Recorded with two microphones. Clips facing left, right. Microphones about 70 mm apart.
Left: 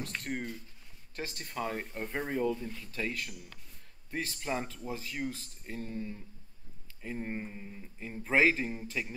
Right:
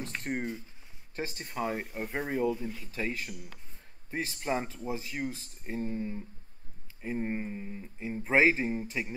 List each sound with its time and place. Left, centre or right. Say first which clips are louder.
0.0 s speech: right 3 dB; right